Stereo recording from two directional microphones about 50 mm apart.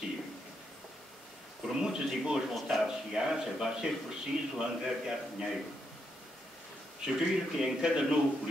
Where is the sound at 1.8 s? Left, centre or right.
Centre.